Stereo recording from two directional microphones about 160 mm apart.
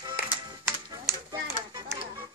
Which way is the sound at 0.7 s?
20° right (ahead or behind).